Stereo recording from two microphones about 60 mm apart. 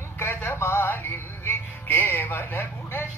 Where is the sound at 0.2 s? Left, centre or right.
Left.